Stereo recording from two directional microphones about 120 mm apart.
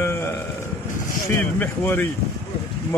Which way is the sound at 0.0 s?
20° left (ahead or behind).